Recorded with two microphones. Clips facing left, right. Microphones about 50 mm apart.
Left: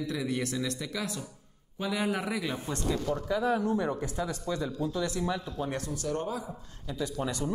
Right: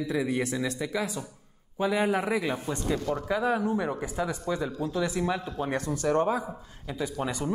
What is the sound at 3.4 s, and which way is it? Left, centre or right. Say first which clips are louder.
Speech: even; centre.